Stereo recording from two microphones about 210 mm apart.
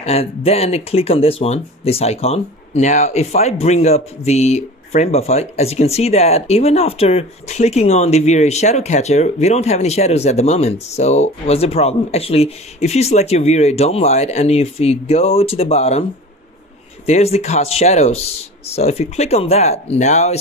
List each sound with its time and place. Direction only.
0.0 s speech: 30° left (ahead or behind)